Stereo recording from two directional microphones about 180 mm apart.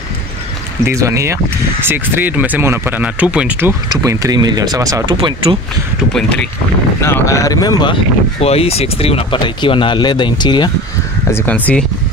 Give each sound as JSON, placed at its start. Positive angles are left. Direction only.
{"t": 0.8, "sound": "speech", "side_deg": -15}
{"t": 7.0, "sound": "speech", "side_deg": 15}
{"t": 11.2, "sound": "speech", "side_deg": 10}